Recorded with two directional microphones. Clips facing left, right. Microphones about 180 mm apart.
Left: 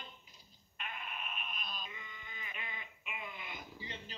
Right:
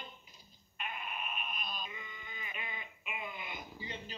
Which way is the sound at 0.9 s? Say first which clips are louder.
Right 3 dB; 10° right (ahead or behind).